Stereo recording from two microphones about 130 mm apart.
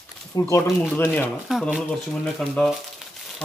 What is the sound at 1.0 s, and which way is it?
Speech, 15° left (ahead or behind).